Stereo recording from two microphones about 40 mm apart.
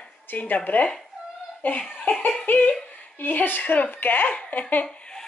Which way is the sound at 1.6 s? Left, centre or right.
Left.